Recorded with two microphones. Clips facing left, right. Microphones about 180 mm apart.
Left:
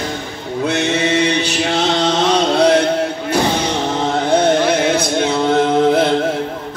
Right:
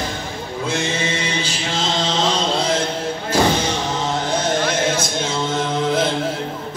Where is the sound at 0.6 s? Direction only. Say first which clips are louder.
Left 6 dB; 65° left (ahead or behind).